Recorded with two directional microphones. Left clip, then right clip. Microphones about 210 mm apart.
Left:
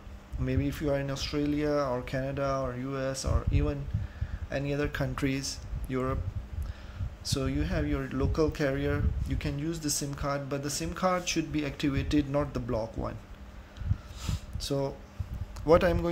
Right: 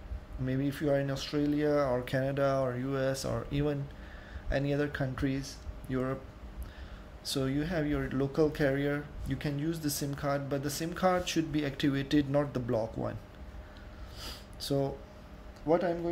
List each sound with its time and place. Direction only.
0.5 s speech: 10° left (ahead or behind)
7.2 s speech: 5° left (ahead or behind)
14.2 s sniff: 5° left (ahead or behind)
15.7 s speech: 35° left (ahead or behind)